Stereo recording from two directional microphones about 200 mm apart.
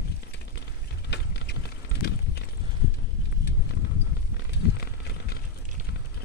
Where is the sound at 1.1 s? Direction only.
55° left (ahead or behind).